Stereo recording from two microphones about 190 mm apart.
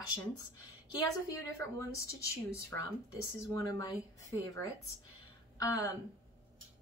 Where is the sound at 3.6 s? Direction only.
20° left (ahead or behind).